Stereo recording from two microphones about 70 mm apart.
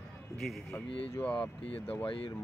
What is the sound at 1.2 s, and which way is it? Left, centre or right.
Speech, centre.